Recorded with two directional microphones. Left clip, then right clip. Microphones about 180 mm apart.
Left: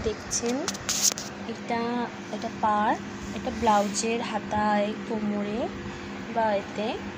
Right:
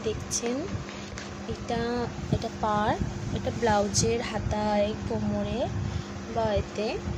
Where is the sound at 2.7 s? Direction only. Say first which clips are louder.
Left 2 dB; 15° right (ahead or behind).